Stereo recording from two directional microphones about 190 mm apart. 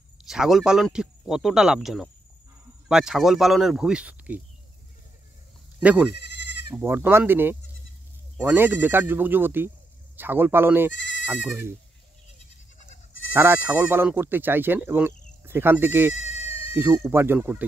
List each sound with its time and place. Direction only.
0.2 s speech: centre (ahead or behind)
5.8 s speech: 5° right (ahead or behind)
6.2 s goat: 65° left (ahead or behind)
6.7 s speech: 10° right (ahead or behind)
10.9 s goat: 75° left (ahead or behind)
13.3 s speech: 10° right (ahead or behind)